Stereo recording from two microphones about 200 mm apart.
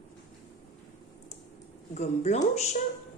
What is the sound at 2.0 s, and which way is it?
Speech, 35° left (ahead or behind).